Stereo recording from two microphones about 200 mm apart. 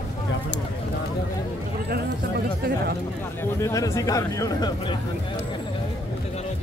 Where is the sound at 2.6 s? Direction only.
50° right (ahead or behind).